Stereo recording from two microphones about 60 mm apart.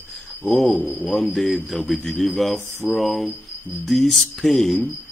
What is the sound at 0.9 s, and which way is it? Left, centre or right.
Speech, left.